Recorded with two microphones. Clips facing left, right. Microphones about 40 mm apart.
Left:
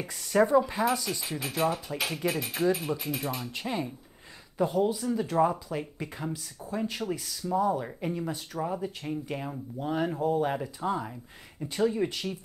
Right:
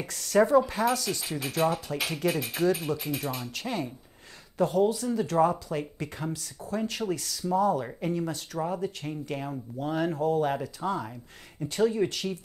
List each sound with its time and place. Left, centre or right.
0.0 s speech: centre
8.5 s speech: centre